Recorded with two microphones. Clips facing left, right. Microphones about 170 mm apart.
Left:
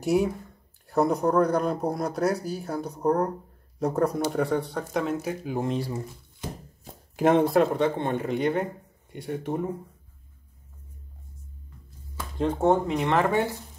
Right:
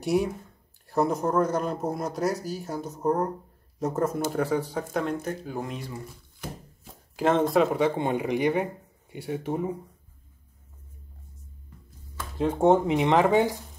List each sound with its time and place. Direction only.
0.0 s speech: centre (ahead or behind)
5.6 s speech: 30° left (ahead or behind)
7.2 s speech: 15° left (ahead or behind)
7.4 s speech: 5° right (ahead or behind)
12.2 s a sound: 5° right (ahead or behind)
12.5 s speech: 20° right (ahead or behind)